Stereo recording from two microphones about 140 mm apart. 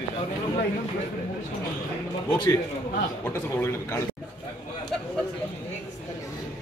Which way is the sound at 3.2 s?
20° left (ahead or behind).